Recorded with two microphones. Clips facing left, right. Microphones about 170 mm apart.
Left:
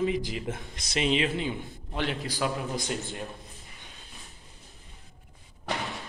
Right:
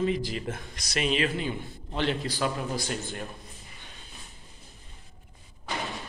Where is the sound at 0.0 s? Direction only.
15° left (ahead or behind).